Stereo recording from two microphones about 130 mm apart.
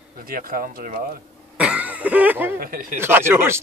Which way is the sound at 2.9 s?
20° right (ahead or behind).